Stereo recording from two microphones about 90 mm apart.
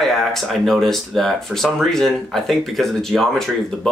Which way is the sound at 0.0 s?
5° left (ahead or behind).